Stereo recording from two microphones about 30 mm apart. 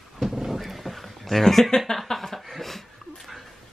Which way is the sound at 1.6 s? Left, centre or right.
Centre.